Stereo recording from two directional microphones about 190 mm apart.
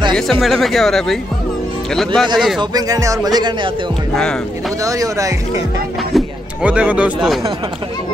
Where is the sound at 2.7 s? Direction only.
20° right (ahead or behind).